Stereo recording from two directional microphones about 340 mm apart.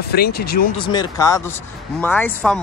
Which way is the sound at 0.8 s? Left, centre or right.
Centre.